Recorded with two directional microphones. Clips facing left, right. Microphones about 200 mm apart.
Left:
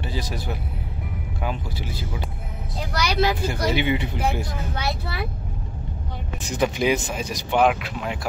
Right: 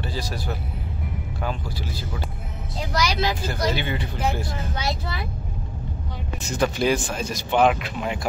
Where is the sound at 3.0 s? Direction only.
60° left (ahead or behind).